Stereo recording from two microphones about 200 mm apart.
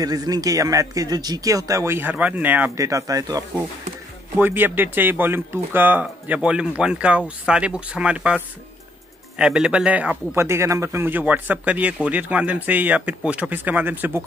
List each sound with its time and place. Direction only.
0.0 s a man's voice: 20° right (ahead or behind)
9.4 s a man's voice: 5° right (ahead or behind)